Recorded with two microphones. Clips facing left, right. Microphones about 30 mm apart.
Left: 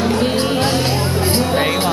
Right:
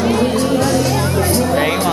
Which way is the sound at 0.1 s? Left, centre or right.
Left.